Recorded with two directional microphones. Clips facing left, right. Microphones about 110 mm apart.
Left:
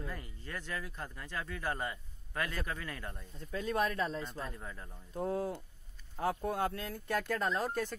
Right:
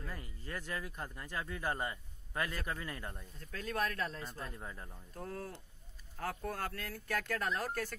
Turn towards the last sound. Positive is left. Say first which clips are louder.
# left 3 dB
turn(degrees=20)  # may be behind; listen again after turning